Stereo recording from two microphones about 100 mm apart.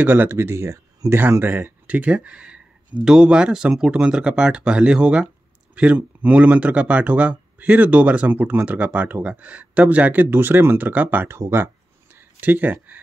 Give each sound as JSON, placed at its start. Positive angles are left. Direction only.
{"t": 0.0, "sound": "speech", "side_deg": -20}